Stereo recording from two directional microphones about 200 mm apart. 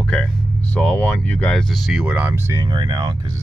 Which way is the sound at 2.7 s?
20° right (ahead or behind).